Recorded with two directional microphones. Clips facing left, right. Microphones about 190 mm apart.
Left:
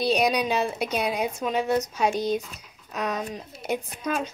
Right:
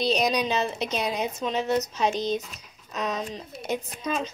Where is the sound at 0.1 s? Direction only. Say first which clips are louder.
Left 1 dB; 5° left (ahead or behind).